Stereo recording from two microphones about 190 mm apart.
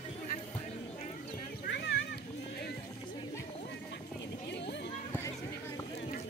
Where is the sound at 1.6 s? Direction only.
65° left (ahead or behind).